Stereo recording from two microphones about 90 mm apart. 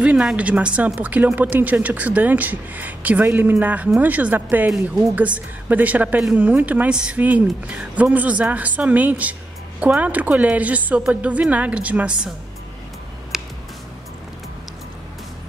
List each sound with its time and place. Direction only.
0.0 s a woman's voice: 10° right (ahead or behind)
13.3 s music: 5° right (ahead or behind)